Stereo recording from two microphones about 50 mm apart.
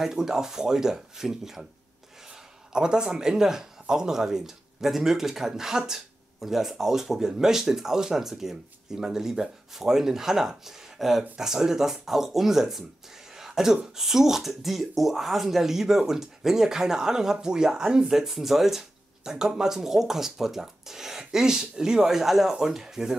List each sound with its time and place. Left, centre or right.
0.0 s speech: centre
2.7 s speech: centre
13.4 s throat clearing: centre
13.9 s speech: centre
18.0 s speech: centre